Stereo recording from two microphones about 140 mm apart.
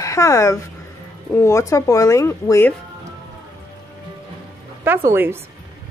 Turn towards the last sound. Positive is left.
turn(degrees=-20)  # may be behind; listen again after turning